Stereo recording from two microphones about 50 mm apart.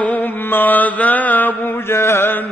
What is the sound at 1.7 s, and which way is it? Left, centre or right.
Chant, left.